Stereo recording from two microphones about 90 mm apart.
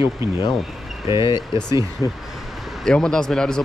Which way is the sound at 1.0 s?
65° left (ahead or behind).